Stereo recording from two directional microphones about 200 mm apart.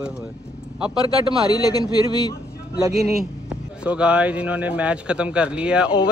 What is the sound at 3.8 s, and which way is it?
Speech, 5° right (ahead or behind).